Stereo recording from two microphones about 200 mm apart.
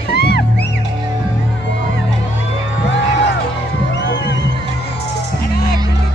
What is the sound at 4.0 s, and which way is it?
Music, 65° left (ahead or behind).